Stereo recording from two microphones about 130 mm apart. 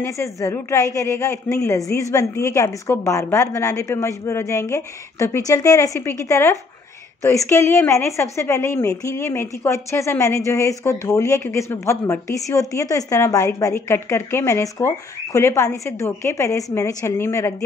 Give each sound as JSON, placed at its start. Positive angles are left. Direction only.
{"t": 0.0, "sound": "speech", "side_deg": 20}